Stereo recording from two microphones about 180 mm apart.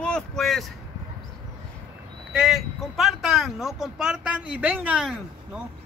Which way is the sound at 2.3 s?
5° right (ahead or behind).